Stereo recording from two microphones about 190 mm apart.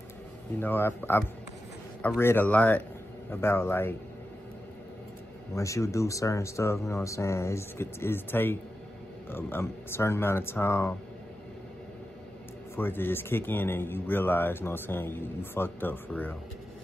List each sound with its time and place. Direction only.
0.6 s speech: 10° left (ahead or behind)
5.5 s speech: 15° left (ahead or behind)
12.7 s speech: 10° left (ahead or behind)